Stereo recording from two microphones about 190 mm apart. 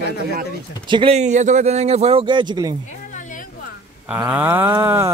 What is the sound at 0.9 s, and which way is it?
A man's voice, 30° right (ahead or behind).